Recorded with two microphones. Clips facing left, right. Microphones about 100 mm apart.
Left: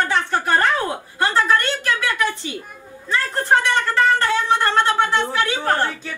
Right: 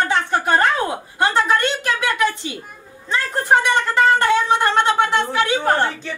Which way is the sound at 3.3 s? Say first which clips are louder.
Right 2 dB; 15° right (ahead or behind).